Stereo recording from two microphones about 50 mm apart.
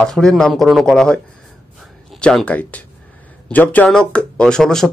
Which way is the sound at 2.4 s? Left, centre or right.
Left.